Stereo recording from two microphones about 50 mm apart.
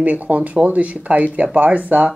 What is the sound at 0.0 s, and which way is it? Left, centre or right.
Speech, right.